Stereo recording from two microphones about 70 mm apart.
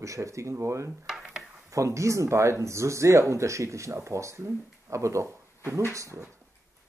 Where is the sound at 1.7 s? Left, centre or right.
Right.